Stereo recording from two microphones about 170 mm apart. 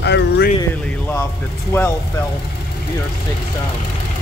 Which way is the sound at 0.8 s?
15° left (ahead or behind).